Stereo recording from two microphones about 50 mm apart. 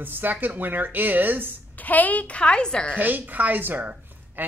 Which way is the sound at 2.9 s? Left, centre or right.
Right.